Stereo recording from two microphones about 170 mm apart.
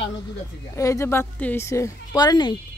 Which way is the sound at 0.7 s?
15° left (ahead or behind).